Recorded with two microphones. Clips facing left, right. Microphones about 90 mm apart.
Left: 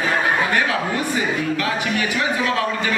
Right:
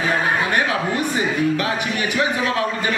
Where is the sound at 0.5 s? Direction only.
25° right (ahead or behind).